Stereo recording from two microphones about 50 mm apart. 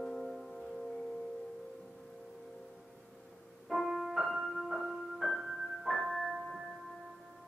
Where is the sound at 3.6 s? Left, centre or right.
Centre.